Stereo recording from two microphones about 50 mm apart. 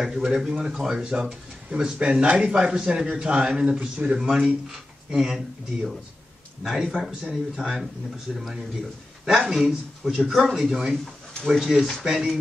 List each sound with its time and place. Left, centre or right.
0.0 s speech: centre
7.6 s speech: centre
12.1 s speech: centre